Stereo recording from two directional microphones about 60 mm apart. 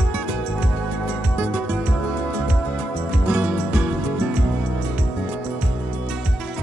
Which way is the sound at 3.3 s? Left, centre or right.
Right.